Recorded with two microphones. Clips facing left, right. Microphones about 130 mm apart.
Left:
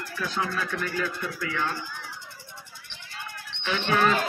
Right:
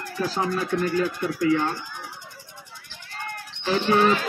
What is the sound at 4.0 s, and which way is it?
Speech, 45° left (ahead or behind).